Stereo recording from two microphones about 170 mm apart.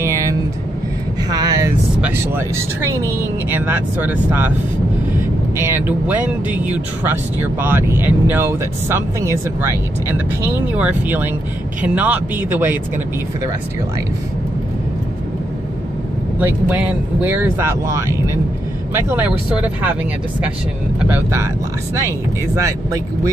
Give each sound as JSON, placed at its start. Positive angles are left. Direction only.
{"t": 0.0, "sound": "vehicle", "side_deg": -20}
{"t": 2.0, "sound": "speech", "side_deg": -10}
{"t": 5.6, "sound": "speech", "side_deg": -10}
{"t": 16.3, "sound": "speech", "side_deg": -10}
{"t": 21.1, "sound": "speech", "side_deg": -15}